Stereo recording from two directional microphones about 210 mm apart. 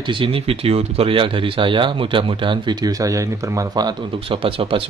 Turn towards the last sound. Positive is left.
turn(degrees=-25)  # may be behind; listen again after turning